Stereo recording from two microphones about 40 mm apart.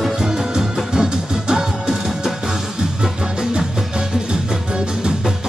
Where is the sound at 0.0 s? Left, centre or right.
Centre.